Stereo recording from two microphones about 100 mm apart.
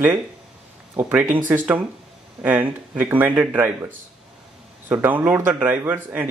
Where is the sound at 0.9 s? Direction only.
20° right (ahead or behind).